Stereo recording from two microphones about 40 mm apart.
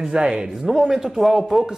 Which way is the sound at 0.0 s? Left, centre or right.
Right.